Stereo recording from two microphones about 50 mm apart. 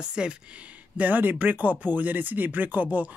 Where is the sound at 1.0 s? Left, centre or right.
Right.